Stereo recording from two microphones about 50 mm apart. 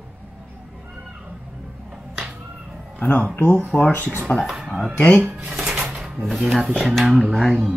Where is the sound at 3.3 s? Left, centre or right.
Left.